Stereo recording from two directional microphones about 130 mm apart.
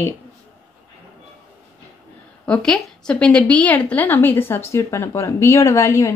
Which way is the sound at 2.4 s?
5° left (ahead or behind).